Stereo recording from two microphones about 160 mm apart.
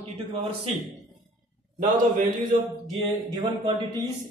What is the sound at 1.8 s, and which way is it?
Speech, 50° right (ahead or behind).